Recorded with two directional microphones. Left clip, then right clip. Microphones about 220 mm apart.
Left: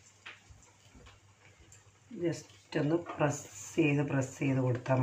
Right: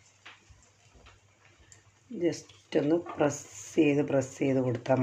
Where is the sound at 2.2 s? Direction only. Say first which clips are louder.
Right 5 dB; 50° right (ahead or behind).